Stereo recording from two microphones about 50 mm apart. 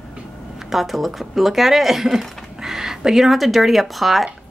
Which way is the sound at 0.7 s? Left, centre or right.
Centre.